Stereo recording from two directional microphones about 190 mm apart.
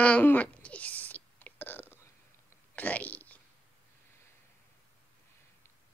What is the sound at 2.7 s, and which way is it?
Whispering, 10° left (ahead or behind).